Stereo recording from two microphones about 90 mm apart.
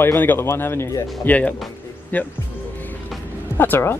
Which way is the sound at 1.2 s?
15° left (ahead or behind).